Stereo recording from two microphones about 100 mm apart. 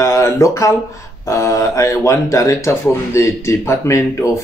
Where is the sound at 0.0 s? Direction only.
30° left (ahead or behind).